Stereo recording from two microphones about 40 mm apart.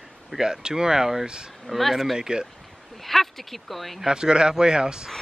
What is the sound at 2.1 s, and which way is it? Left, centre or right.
Speech, centre.